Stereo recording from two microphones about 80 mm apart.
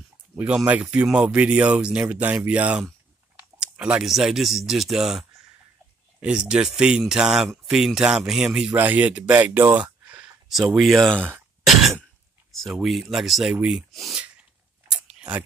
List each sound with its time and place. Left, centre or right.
0.7 s speech: centre
3.5 s a sound: centre
4.1 s speech: centre
6.2 s speech: centre
8.7 s speech: right
10.5 s speech: centre
11.1 s speech: centre
11.6 s throat clearing: centre
12.6 s speech: centre
14.9 s chewing: centre